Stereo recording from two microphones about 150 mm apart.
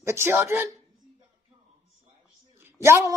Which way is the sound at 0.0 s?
15° right (ahead or behind).